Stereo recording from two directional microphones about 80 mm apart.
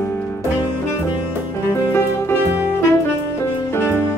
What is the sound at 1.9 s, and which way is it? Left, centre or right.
Music, left.